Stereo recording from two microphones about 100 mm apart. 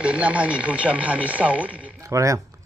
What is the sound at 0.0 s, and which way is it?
A man's voice, 10° right (ahead or behind).